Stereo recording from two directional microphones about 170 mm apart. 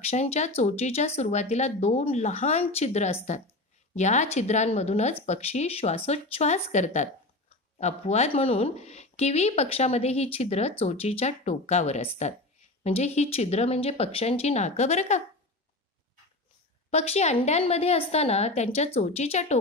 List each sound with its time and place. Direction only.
0.1 s speech: 40° left (ahead or behind)
16.9 s speech: 40° left (ahead or behind)